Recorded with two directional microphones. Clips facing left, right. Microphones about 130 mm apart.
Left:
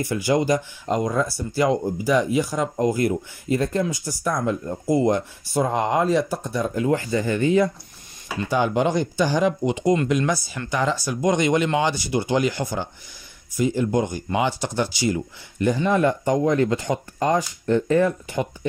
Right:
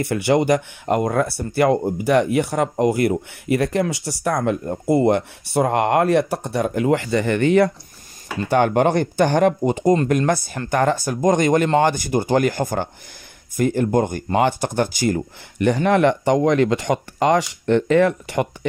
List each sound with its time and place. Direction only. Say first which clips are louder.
0.0 s speech: right 3 dB; 65° right (ahead or behind)
8.5 s speech: right 4 dB; 60° right (ahead or behind)
15.6 s speech: right 3 dB; 70° right (ahead or behind)